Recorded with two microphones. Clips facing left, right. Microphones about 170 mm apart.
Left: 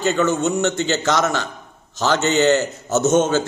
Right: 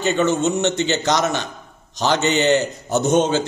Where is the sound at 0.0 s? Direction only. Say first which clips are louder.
Even; 20° right (ahead or behind).